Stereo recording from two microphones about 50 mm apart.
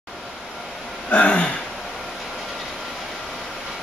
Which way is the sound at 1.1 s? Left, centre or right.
Left.